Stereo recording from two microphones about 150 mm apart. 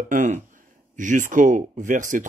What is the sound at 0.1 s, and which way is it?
Speech, 60° right (ahead or behind).